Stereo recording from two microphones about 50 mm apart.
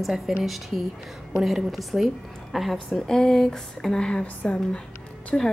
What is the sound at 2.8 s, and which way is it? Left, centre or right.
Speech, centre.